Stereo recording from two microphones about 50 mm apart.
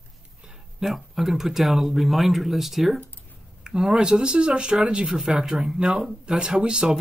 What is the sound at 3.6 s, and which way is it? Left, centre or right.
Speech, centre.